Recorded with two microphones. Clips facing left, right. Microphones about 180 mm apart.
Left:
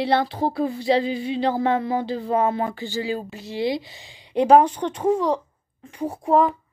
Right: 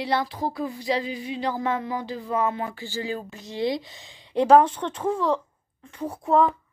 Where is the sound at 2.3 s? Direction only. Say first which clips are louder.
Left 4 dB; 35° left (ahead or behind).